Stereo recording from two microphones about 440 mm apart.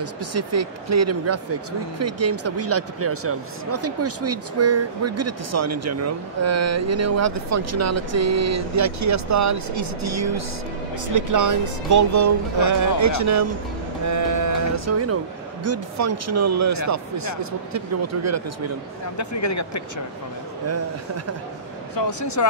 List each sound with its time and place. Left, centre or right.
0.0 s speech: right
14.0 s music: right
15.6 s speech: right
19.1 s speech: left
21.9 s speech: left